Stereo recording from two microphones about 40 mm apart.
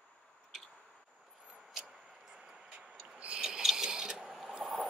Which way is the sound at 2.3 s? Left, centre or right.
Right.